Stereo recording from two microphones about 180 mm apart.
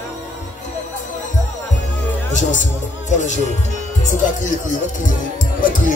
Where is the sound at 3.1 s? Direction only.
40° left (ahead or behind).